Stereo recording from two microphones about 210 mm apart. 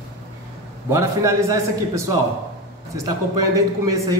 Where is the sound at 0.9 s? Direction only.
15° right (ahead or behind).